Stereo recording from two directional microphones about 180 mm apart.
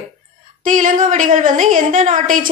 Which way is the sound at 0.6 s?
45° right (ahead or behind).